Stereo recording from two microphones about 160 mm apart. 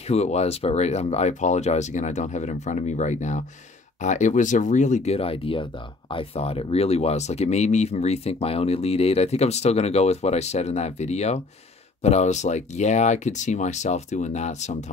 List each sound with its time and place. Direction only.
0.1 s speech: 40° left (ahead or behind)